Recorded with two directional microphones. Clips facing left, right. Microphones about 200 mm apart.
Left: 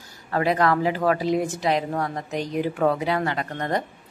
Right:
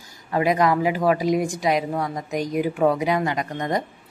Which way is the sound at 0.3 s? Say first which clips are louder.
Right 1 dB; 15° right (ahead or behind).